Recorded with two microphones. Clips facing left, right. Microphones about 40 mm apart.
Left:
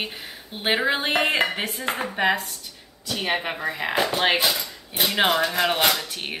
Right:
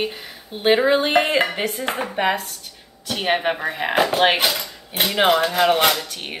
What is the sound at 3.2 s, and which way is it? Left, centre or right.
Speech, right.